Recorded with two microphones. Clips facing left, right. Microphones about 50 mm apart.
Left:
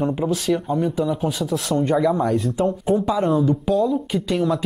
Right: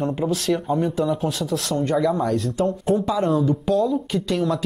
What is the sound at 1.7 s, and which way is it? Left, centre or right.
Speech, centre.